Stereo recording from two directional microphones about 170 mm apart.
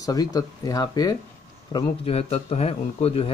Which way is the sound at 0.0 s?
20° left (ahead or behind).